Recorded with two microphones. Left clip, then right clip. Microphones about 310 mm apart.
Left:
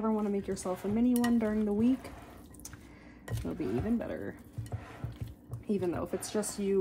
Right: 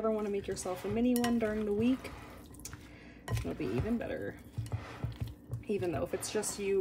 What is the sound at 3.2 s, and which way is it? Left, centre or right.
Speech, centre.